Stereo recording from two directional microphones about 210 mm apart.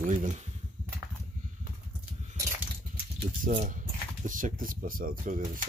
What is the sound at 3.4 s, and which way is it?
Speech, 40° right (ahead or behind).